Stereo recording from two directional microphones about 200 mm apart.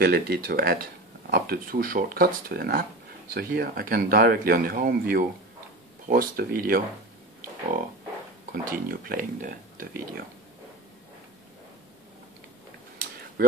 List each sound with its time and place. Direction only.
0.0 s speech: 50° right (ahead or behind)
8.5 s speech: 45° right (ahead or behind)